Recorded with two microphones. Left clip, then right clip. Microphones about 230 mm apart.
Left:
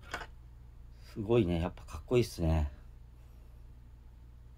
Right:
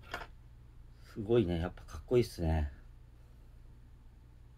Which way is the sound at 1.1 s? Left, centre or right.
Left.